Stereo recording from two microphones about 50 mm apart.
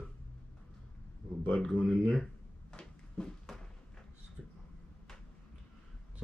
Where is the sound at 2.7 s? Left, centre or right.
Centre.